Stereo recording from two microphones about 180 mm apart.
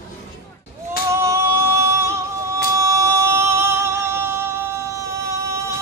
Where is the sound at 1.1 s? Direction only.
15° right (ahead or behind).